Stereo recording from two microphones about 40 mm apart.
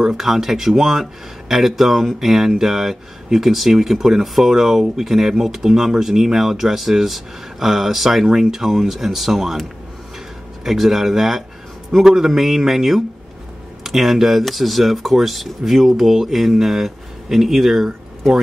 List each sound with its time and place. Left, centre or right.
0.1 s speech: centre
10.6 s speech: centre